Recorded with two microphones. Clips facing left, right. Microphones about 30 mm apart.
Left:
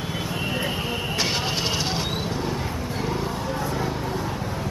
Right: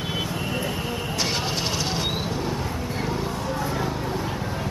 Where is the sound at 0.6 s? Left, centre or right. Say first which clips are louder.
Left 1 dB; centre.